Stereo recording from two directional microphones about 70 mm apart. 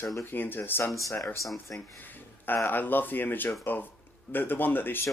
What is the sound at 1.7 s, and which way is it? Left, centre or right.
Speech, left.